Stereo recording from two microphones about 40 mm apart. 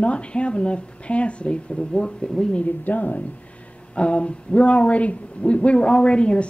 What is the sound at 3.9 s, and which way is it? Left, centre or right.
Speech, left.